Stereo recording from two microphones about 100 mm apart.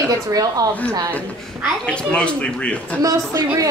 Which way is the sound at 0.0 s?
35° right (ahead or behind).